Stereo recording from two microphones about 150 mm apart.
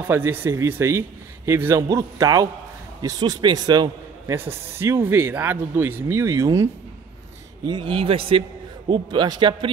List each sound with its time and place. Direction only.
0.0 s a man's voice: 15° right (ahead or behind)
4.5 s a man's voice: 15° right (ahead or behind)
7.6 s a man's voice: 30° right (ahead or behind)